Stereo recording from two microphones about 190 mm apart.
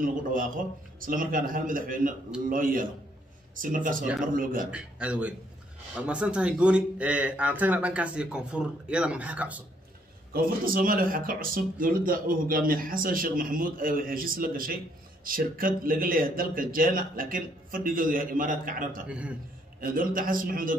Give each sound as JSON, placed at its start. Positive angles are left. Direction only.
{"t": 0.0, "sound": "speech", "side_deg": -45}
{"t": 4.6, "sound": "speech", "side_deg": -5}
{"t": 10.3, "sound": "speech", "side_deg": -50}
{"t": 19.0, "sound": "speech", "side_deg": -5}
{"t": 19.8, "sound": "speech", "side_deg": -50}